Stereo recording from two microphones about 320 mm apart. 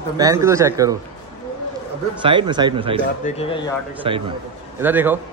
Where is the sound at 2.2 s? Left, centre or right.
Centre.